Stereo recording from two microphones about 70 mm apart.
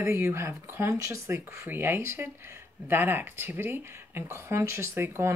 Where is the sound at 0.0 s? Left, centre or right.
Right.